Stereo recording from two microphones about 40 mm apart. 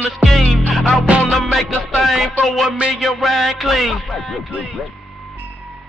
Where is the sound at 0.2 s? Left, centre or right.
Centre.